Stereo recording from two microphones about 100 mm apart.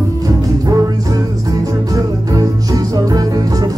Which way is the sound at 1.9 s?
35° right (ahead or behind).